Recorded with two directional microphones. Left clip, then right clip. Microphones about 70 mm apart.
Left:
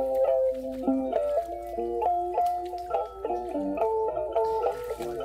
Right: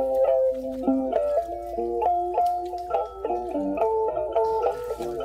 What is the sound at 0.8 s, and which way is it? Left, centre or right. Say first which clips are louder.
Music: right 3 dB; centre.